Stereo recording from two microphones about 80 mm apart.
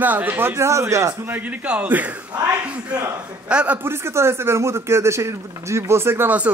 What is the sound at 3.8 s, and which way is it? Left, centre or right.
Speech, right.